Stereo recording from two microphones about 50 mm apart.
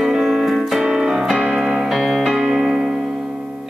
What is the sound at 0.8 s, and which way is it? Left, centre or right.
Music, centre.